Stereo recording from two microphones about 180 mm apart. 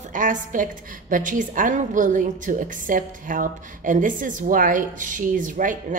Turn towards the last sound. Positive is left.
turn(degrees=-45)  # may be behind; listen again after turning